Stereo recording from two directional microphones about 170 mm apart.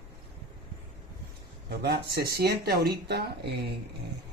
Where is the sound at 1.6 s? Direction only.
65° right (ahead or behind).